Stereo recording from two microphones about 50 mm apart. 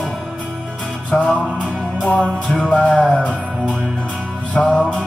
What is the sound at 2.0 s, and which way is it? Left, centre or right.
Music, left.